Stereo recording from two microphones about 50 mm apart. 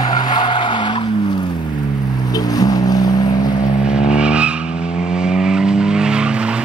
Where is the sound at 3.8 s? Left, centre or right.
Centre.